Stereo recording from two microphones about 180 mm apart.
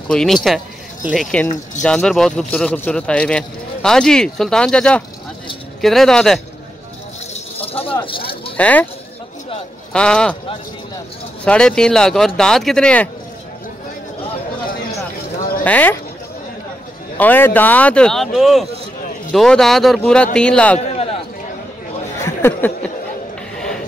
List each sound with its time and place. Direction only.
0.1 s speech: 5° left (ahead or behind)
7.6 s a sound: 30° left (ahead or behind)
8.5 s speech: 10° left (ahead or behind)
9.9 s speech: 5° left (ahead or behind)
11.4 s speech: 5° left (ahead or behind)
15.6 s speech: 10° left (ahead or behind)
17.2 s speech: 10° left (ahead or behind)
22.2 s a sound: 10° left (ahead or behind)